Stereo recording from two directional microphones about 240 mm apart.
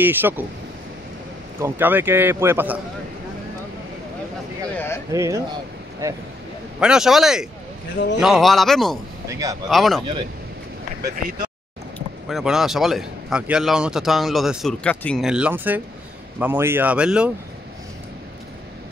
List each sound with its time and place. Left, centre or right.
0.0 s speech: centre
1.6 s speech: centre
4.7 s a sound: centre
5.1 s speech: centre
9.3 s speech: centre
9.7 s speech: centre
11.1 s speech: right
12.3 s speech: centre